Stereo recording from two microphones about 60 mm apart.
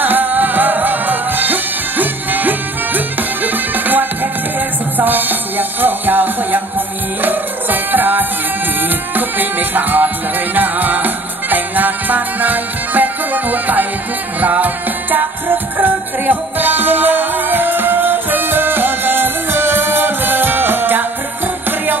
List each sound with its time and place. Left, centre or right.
0.0 s music: right